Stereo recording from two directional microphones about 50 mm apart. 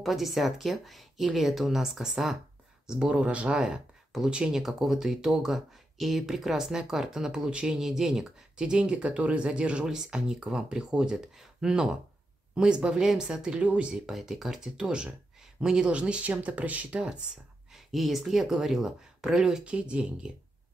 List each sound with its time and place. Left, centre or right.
0.0 s speech: centre
3.1 s speech: right
4.1 s speech: centre
13.6 s speech: right
13.9 s speech: centre
15.9 s speech: right
17.7 s speech: centre; by 20.3 s right